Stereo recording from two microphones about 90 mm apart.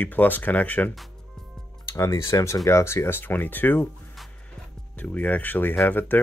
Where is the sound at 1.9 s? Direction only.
35° left (ahead or behind).